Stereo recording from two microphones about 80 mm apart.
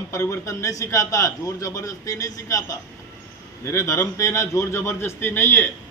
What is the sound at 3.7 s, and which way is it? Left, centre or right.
A man's voice, left.